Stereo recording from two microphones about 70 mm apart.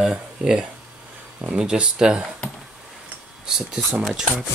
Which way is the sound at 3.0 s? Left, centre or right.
Centre.